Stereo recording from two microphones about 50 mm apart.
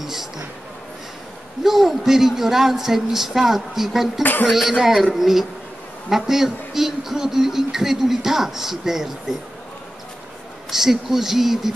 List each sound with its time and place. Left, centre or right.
0.0 s music: centre
1.6 s a man's voice: centre
4.2 s a man's voice: left
4.5 s a man's voice: centre
10.7 s a man's voice: centre